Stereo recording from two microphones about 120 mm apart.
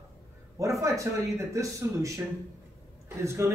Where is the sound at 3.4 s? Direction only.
25° right (ahead or behind).